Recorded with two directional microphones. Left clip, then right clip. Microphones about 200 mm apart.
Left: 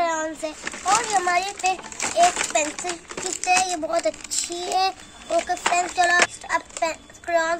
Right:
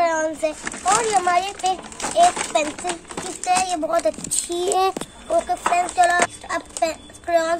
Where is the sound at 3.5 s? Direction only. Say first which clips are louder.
Right 1 dB; 10° right (ahead or behind).